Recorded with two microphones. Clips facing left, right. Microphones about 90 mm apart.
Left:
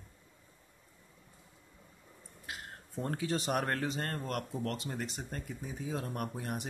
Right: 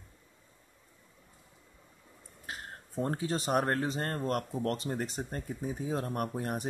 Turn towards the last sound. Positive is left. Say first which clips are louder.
# right 4 dB
turn(degrees=-40)  # may be behind; listen again after turning